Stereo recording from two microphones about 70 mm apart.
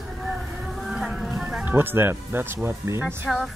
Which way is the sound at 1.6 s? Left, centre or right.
Right.